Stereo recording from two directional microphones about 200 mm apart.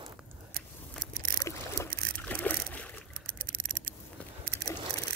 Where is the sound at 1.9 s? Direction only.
45° right (ahead or behind).